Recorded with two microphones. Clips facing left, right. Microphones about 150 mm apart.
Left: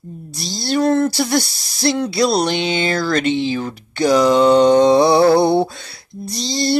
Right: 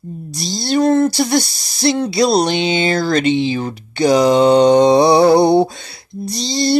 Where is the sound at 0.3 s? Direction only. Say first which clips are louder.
Right 2 dB; 5° left (ahead or behind).